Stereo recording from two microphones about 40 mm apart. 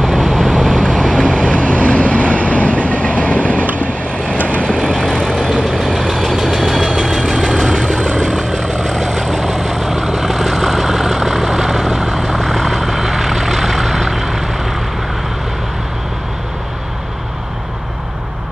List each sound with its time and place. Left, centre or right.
0.0 s vehicle: centre
1.1 s vehicle: left
1.5 s train: left
4.6 s vehicle: centre
5.9 s vehicle: centre